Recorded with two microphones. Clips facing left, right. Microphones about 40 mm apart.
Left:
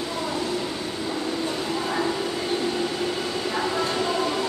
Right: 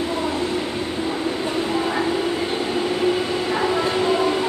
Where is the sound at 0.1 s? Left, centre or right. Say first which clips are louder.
Right 4 dB; right.